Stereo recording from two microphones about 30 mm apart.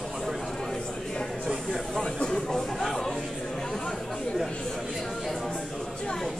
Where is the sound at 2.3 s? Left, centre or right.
Centre.